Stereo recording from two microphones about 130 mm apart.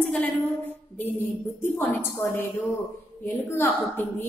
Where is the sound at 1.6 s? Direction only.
15° left (ahead or behind).